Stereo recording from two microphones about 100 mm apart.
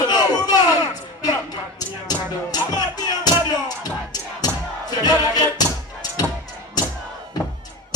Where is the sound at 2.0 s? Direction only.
40° left (ahead or behind).